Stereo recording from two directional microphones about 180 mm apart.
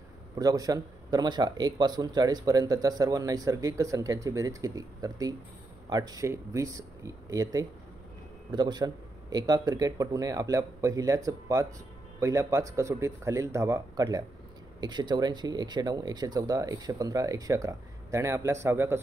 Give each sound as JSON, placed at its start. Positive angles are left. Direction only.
{"t": 0.4, "sound": "speech", "side_deg": -20}